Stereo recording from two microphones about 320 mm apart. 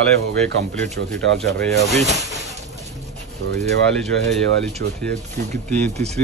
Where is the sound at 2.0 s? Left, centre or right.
Centre.